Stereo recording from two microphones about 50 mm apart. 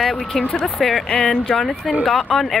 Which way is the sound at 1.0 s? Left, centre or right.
Centre.